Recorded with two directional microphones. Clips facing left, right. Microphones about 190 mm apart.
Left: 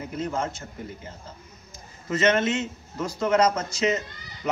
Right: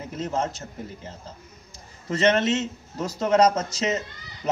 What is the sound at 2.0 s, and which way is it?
Speech, 35° right (ahead or behind).